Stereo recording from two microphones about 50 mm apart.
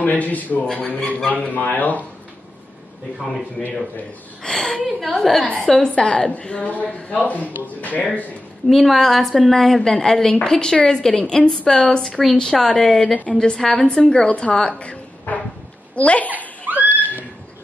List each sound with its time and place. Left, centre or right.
0.0 s a man's voice: left
0.9 s speech: centre
1.4 s a man's voice: left
3.2 s a woman's voice: centre
4.4 s a woman's voice: centre
5.0 s a woman's voice: centre
5.7 s a woman's voice: centre
8.6 s a woman's voice: centre; by 16.3 s left
16.6 s a sound: right